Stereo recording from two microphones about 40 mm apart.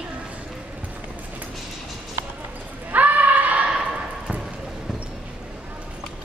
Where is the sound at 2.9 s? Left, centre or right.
Right.